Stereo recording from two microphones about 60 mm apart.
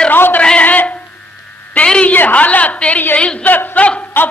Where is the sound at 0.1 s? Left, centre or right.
Left.